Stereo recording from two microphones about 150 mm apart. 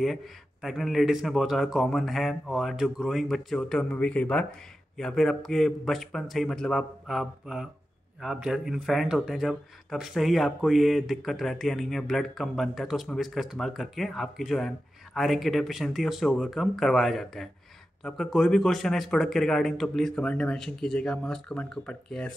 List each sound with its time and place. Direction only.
0.0 s speech: centre (ahead or behind)